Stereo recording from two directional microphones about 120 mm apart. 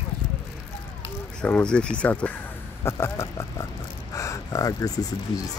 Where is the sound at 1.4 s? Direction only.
10° left (ahead or behind).